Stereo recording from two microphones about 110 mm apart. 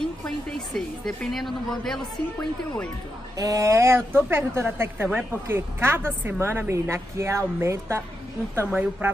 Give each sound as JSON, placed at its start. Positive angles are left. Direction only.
{"t": 0.2, "sound": "a woman's voice", "side_deg": 5}
{"t": 3.3, "sound": "a woman's voice", "side_deg": -30}